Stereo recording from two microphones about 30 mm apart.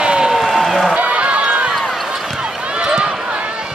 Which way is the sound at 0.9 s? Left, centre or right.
Right.